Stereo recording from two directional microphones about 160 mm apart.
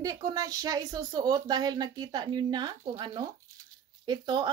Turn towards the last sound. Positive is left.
turn(degrees=-25)  # may be behind; listen again after turning